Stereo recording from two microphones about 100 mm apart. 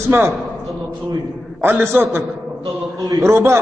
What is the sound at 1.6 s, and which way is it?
Speech, 20° right (ahead or behind).